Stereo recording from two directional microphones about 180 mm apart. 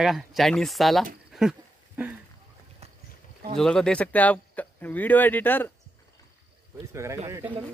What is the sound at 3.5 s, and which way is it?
Speech, 5° left (ahead or behind).